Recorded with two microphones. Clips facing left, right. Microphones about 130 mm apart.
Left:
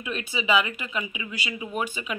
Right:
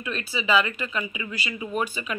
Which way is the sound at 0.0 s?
20° left (ahead or behind).